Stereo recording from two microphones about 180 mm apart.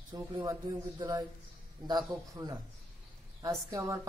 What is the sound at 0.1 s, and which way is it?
A woman's voice, 20° right (ahead or behind).